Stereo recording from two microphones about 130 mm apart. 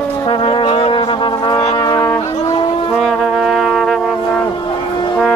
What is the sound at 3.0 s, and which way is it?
Brass instrument, centre (ahead or behind).